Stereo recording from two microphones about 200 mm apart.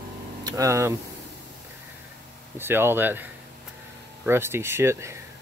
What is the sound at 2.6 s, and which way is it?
Speech, 10° right (ahead or behind).